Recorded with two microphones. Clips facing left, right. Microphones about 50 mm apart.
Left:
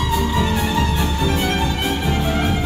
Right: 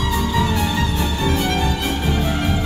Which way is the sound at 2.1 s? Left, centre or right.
Left.